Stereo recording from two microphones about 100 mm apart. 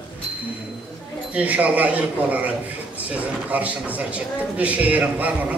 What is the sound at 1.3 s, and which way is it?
A man's voice, 15° right (ahead or behind).